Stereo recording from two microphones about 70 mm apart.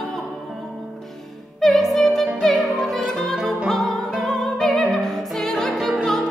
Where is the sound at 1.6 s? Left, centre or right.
Centre.